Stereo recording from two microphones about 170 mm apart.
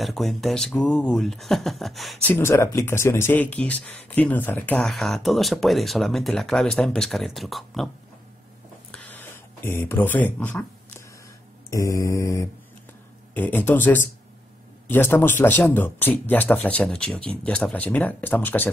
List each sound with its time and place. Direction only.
0.0 s speech: centre (ahead or behind)
2.3 s speech: 15° left (ahead or behind)
8.9 s a sound: 10° left (ahead or behind)
11.7 s speech: 20° left (ahead or behind)